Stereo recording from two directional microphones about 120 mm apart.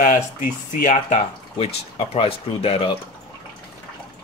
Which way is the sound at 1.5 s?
55° left (ahead or behind).